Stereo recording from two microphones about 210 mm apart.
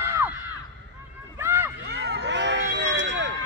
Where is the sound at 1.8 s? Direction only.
55° right (ahead or behind).